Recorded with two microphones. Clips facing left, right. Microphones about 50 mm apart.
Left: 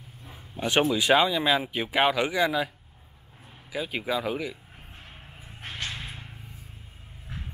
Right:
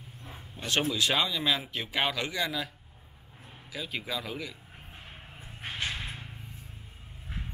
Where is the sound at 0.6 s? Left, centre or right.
Centre.